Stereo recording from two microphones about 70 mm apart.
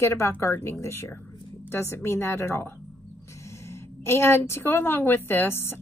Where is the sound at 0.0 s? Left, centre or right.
Left.